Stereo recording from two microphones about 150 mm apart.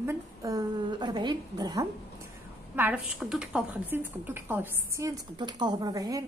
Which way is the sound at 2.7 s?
10° right (ahead or behind).